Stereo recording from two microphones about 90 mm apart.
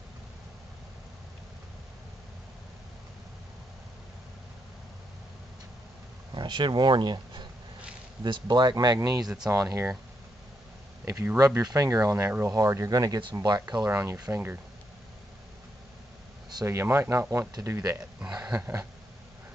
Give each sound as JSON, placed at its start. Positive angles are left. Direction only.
{"t": 6.3, "sound": "speech", "side_deg": -60}
{"t": 9.2, "sound": "speech", "side_deg": -5}
{"t": 9.5, "sound": "speech", "side_deg": -30}
{"t": 11.3, "sound": "speech", "side_deg": -40}
{"t": 12.2, "sound": "speech", "side_deg": -25}
{"t": 12.4, "sound": "speech", "side_deg": -35}
{"t": 13.2, "sound": "speech", "side_deg": -55}
{"t": 13.8, "sound": "speech", "side_deg": -25}
{"t": 16.6, "sound": "speech", "side_deg": -30}
{"t": 17.9, "sound": "speech", "side_deg": -10}